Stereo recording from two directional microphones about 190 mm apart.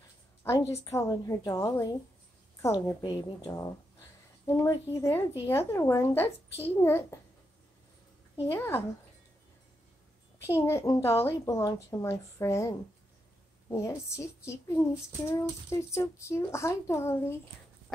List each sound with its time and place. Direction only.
0.4 s a woman's voice: 15° left (ahead or behind)
8.5 s a woman's voice: 10° left (ahead or behind)
10.4 s a woman's voice: 15° left (ahead or behind)